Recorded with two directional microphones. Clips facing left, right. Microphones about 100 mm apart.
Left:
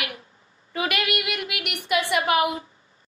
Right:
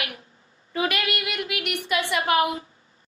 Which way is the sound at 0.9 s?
15° left (ahead or behind).